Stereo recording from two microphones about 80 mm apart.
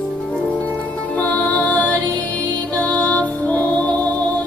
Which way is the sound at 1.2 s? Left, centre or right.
Centre.